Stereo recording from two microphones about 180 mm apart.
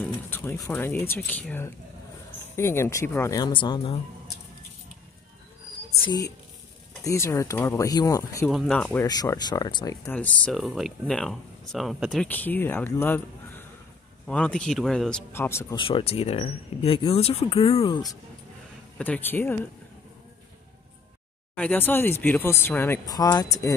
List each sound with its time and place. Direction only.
0.0 s speech: 10° left (ahead or behind); by 4.0 s 30° left (ahead or behind)
6.0 s speech: 20° left (ahead or behind)
8.5 s speech: centre (ahead or behind)
9.0 s speech: 20° left (ahead or behind)
10.1 s speech: 5° left (ahead or behind)
12.3 s speech: 10° left (ahead or behind)
15.7 s speech: 30° left (ahead or behind)
18.9 s speech: 10° left (ahead or behind)
21.5 s speech: 10° left (ahead or behind)